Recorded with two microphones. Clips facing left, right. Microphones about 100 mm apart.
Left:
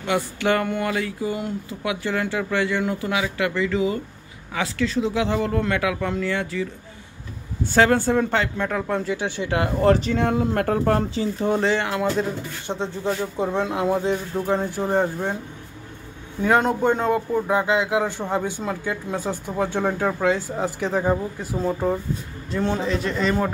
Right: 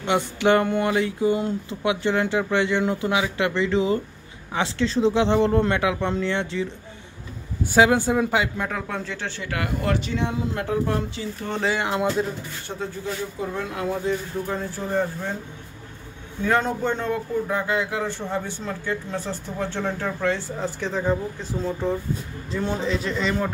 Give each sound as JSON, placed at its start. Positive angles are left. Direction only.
{"t": 0.0, "sound": "a sound", "side_deg": -20}
{"t": 7.7, "sound": "speech", "side_deg": -15}
{"t": 8.6, "sound": "speech", "side_deg": 0}
{"t": 9.8, "sound": "speech", "side_deg": 40}
{"t": 11.6, "sound": "speech", "side_deg": -10}
{"t": 12.6, "sound": "speech", "side_deg": 25}
{"t": 16.4, "sound": "a man's voice", "side_deg": 15}